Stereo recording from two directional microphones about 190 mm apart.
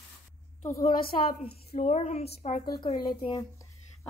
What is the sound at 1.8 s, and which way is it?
Speech, 35° left (ahead or behind).